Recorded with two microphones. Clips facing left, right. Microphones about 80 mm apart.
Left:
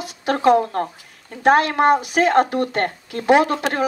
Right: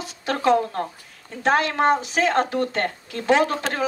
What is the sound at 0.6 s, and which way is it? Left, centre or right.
Speech, left.